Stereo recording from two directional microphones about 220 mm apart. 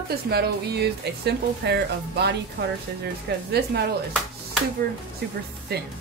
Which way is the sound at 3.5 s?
45° right (ahead or behind).